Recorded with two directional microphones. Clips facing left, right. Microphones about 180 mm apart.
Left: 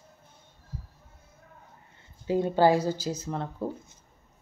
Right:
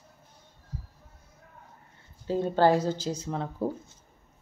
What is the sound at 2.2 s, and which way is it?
Speech, 10° left (ahead or behind).